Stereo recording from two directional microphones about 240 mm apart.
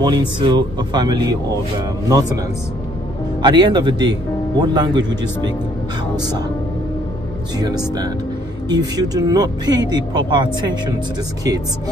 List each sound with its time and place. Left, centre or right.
0.0 s speech: centre
3.4 s speech: centre
7.5 s speech: centre